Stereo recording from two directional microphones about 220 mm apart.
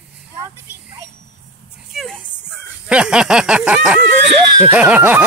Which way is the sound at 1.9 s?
Centre (ahead or behind).